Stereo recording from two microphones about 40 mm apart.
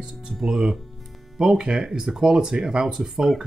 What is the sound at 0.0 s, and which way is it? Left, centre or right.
Speech, centre.